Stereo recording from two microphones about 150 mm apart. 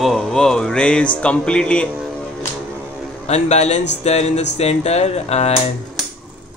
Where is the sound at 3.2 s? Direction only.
45° left (ahead or behind).